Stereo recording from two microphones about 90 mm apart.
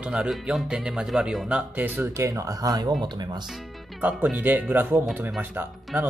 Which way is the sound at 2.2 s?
35° right (ahead or behind).